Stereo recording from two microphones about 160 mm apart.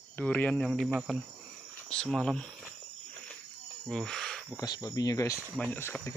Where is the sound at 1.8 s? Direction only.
5° left (ahead or behind).